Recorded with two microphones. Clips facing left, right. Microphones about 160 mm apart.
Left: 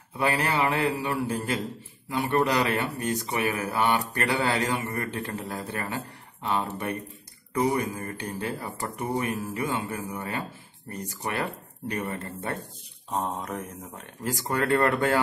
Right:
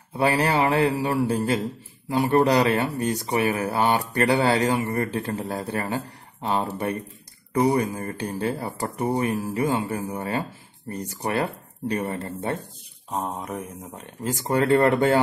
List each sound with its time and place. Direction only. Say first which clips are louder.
0.2 s speech: right 4 dB; 35° right (ahead or behind)
13.1 s mantra: right 1 dB; 5° right (ahead or behind)
14.2 s speech: right 5 dB; 20° right (ahead or behind)